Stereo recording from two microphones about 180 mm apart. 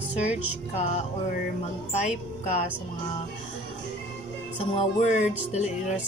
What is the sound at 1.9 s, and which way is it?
Speech, 40° left (ahead or behind).